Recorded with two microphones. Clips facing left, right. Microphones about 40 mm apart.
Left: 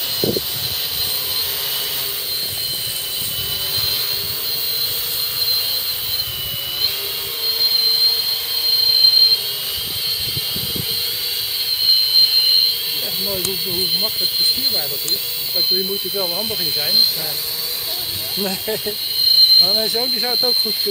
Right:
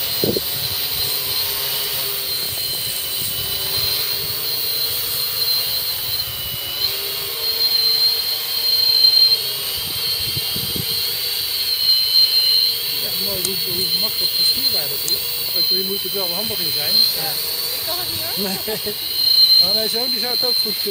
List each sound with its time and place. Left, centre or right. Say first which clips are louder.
8.7 s a sound: left 1 dB; centre
11.9 s jet engine: left 1 dB; centre
13.5 s speech: left 1 dB; centre
15.5 s speech: left 1 dB; centre
18.3 s speech: left 3 dB; centre